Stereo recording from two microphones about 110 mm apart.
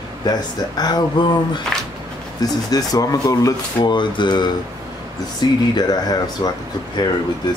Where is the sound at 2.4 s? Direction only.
35° left (ahead or behind).